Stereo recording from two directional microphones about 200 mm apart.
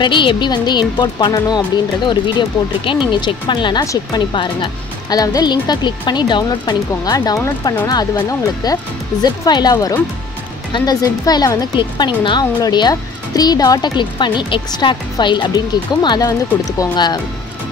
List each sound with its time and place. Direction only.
0.0 s speech: 25° left (ahead or behind)